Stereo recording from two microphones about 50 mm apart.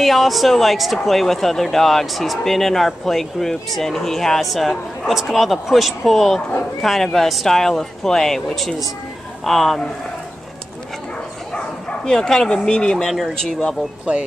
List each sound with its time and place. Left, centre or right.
0.0 s speech: centre
12.0 s speech: centre